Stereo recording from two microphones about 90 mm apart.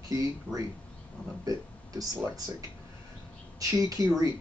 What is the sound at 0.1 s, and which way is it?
Speech, 40° right (ahead or behind).